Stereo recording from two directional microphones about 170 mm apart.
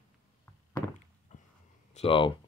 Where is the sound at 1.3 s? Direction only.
45° left (ahead or behind).